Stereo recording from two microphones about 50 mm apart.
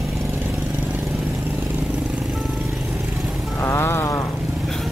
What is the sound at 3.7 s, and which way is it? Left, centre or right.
Music, left.